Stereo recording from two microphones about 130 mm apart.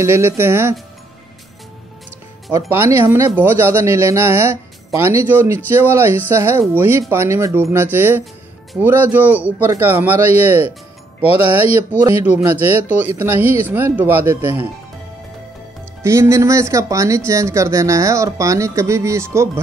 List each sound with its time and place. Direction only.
0.0 s speech: 20° right (ahead or behind)
2.7 s speech: 20° right (ahead or behind)
12.1 s speech: 15° right (ahead or behind)
16.0 s speech: 20° right (ahead or behind)